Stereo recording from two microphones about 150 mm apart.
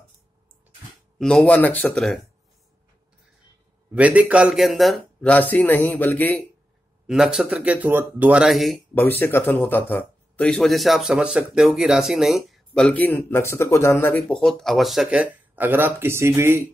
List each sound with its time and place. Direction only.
1.1 s speech: 5° left (ahead or behind)
3.9 s speech: 10° right (ahead or behind); by 6.4 s 10° left (ahead or behind)
7.1 s speech: 5° right (ahead or behind)
8.9 s speech: 15° left (ahead or behind)
14.2 s speech: 5° left (ahead or behind); by 16.6 s 15° right (ahead or behind)